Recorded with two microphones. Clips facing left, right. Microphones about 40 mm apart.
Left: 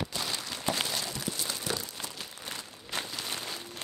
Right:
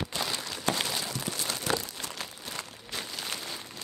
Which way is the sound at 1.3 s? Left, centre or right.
Right.